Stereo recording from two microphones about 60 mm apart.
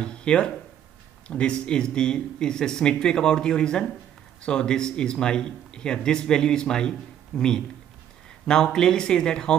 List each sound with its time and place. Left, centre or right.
0.0 s speech: centre